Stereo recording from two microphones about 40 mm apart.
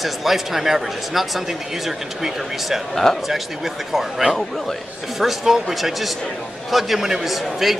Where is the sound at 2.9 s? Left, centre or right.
Centre.